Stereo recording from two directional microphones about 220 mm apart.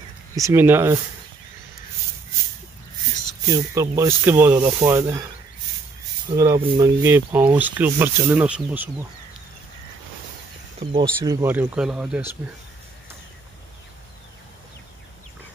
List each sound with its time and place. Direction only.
0.4 s speech: 10° right (ahead or behind)
3.5 s speech: 15° right (ahead or behind)
6.3 s speech: 15° right (ahead or behind)
10.8 s speech: 25° right (ahead or behind)
11.2 s speech: 15° right (ahead or behind)